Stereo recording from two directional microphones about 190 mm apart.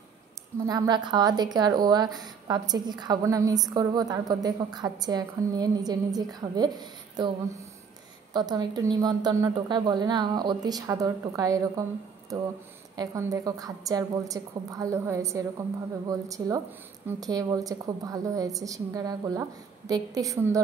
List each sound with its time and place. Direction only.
0.7 s a woman's voice: 20° right (ahead or behind)
12.9 s a woman's voice: 20° right (ahead or behind)